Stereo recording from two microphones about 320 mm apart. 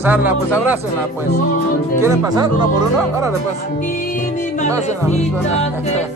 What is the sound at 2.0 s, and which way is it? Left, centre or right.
Speech, centre.